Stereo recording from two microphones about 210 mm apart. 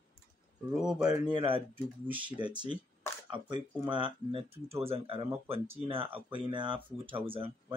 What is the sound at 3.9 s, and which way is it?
Speech, 25° right (ahead or behind).